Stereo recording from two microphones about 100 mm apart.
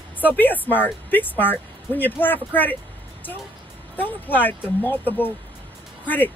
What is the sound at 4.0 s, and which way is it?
Speech, 20° left (ahead or behind).